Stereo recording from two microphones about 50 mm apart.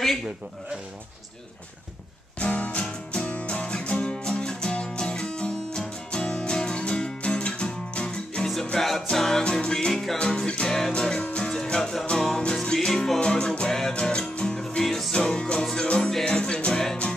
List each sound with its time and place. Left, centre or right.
2.4 s music: left
8.7 s music: centre
9.4 s music: centre
15.2 s music: centre